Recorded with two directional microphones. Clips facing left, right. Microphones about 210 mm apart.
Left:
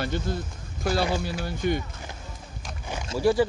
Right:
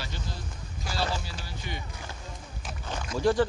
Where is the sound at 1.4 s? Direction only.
50° left (ahead or behind).